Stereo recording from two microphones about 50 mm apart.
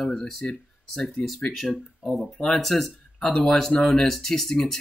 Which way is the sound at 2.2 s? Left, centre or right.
Centre.